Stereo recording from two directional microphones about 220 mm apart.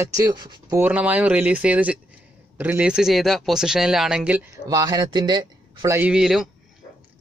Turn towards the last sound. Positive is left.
turn(degrees=0)  # may be behind; listen again after turning